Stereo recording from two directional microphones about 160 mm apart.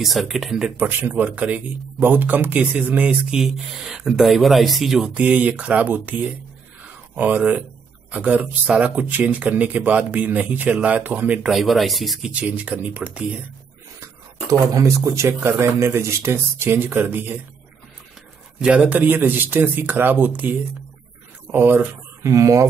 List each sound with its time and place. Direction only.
0.0 s speech: centre (ahead or behind)
14.0 s speech: 20° right (ahead or behind)
18.6 s speech: 5° right (ahead or behind)